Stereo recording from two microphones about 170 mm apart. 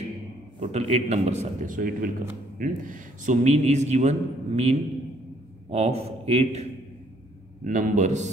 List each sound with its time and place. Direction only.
0.6 s a man's voice: 40° right (ahead or behind)
7.6 s a man's voice: 45° right (ahead or behind)